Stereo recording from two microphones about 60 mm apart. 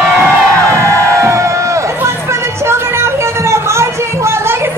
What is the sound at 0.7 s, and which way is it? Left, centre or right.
Crowd, right.